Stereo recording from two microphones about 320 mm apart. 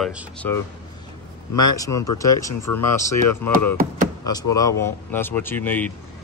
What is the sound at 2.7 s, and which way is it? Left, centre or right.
Music, left.